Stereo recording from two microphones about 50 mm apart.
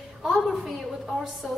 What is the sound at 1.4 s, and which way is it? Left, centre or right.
Speech, centre.